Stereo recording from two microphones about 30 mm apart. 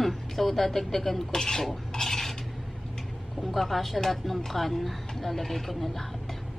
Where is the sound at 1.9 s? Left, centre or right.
Centre.